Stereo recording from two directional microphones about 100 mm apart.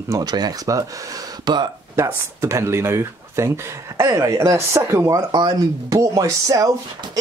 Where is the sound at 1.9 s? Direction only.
30° right (ahead or behind).